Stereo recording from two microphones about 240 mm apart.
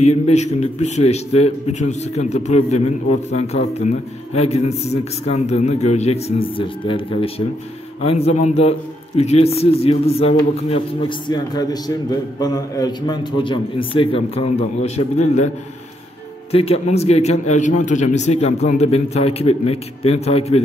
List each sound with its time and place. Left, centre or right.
0.3 s a man's voice: left
16.5 s a man's voice: left